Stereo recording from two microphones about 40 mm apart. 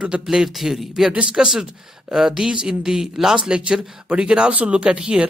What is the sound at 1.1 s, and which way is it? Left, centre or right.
Speech, right.